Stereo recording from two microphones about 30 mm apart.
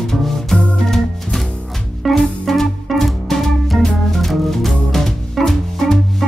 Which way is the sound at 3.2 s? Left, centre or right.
Centre.